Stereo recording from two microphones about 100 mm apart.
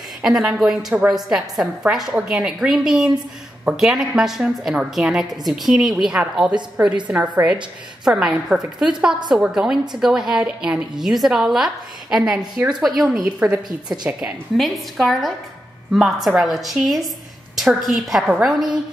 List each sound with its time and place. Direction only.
0.2 s a woman's voice: 5° right (ahead or behind)
7.1 s a woman's voice: 15° right (ahead or behind)
8.0 s a woman's voice: 5° right (ahead or behind)
14.6 s a woman's voice: centre (ahead or behind)